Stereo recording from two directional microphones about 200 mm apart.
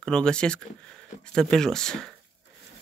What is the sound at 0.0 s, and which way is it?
A man's voice, 5° left (ahead or behind).